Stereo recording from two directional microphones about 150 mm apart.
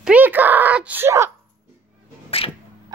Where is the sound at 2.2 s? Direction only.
40° left (ahead or behind).